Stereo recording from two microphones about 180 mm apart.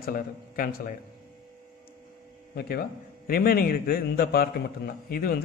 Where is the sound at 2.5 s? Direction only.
60° left (ahead or behind).